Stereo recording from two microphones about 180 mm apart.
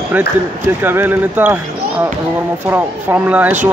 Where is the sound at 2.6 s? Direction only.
10° right (ahead or behind).